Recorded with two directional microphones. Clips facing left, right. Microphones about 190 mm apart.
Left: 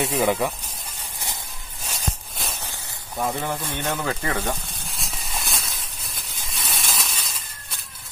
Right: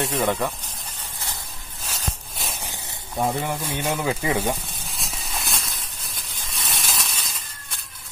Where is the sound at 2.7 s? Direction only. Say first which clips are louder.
Right 2 dB; 20° right (ahead or behind).